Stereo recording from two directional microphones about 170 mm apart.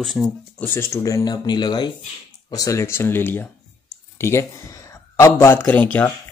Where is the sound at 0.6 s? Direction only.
15° left (ahead or behind).